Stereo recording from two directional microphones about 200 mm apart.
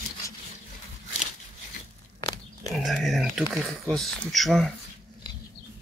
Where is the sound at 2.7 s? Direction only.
Centre (ahead or behind).